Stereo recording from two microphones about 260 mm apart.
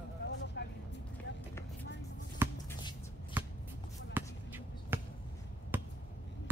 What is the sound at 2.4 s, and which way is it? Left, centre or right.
Shuffle, centre.